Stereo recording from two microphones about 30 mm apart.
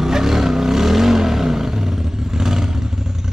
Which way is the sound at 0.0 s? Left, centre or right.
Centre.